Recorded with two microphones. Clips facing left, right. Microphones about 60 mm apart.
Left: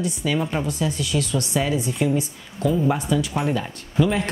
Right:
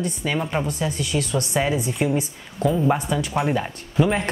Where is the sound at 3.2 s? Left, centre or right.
Centre.